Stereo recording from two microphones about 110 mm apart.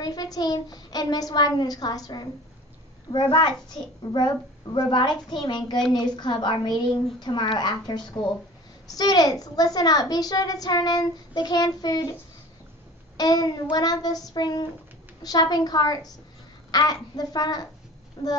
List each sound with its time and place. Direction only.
0.0 s a woman's voice: 35° left (ahead or behind)
13.2 s a woman's voice: 35° left (ahead or behind)